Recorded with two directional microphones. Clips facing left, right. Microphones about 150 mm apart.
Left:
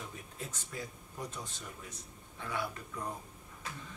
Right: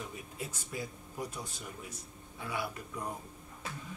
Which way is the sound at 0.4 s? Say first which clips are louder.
Right 3 dB; 10° right (ahead or behind).